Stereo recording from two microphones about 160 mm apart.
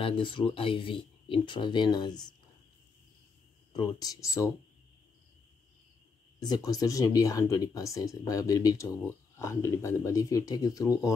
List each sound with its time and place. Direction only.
0.0 s speech: 30° left (ahead or behind)
3.7 s speech: 25° left (ahead or behind)
6.4 s speech: 25° left (ahead or behind)